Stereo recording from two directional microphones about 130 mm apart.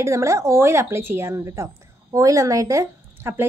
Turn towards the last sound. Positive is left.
turn(degrees=-20)  # may be behind; listen again after turning